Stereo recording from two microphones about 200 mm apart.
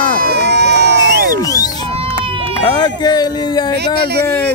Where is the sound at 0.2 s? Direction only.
55° right (ahead or behind).